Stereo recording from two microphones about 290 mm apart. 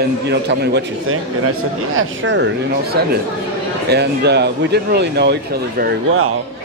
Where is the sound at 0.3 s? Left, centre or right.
Right.